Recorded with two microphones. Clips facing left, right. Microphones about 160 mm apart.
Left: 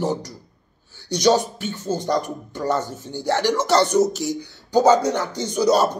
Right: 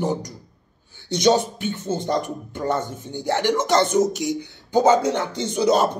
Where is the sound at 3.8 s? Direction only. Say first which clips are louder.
Left 2 dB; 50° right (ahead or behind).